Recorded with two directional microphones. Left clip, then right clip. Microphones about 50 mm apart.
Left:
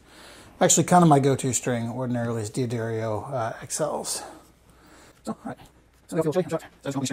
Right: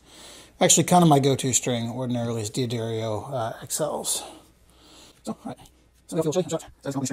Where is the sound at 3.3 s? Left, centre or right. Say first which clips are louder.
Even; left.